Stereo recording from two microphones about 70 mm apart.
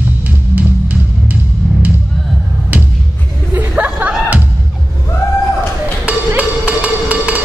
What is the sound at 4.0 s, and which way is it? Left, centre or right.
Music, right.